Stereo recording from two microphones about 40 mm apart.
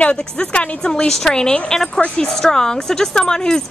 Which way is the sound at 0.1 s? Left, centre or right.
Left.